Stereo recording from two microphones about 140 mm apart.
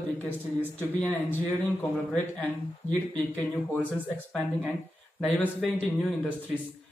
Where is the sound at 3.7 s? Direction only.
5° left (ahead or behind).